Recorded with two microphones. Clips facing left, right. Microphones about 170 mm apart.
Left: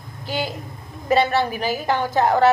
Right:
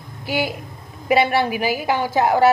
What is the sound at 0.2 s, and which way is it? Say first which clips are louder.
Speech: right 3 dB; 10° right (ahead or behind).